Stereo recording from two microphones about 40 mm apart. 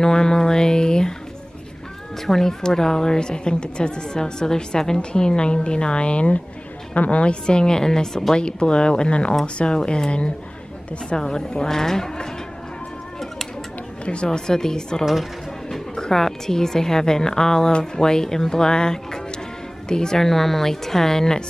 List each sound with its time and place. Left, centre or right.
0.0 s music: centre
2.2 s a woman's voice: centre
14.0 s a woman's voice: left